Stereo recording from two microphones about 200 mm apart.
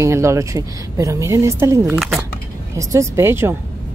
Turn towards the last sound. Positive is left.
turn(degrees=-10)  # may be behind; listen again after turning